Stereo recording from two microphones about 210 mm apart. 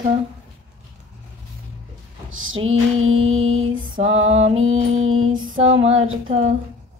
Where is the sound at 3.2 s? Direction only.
70° right (ahead or behind).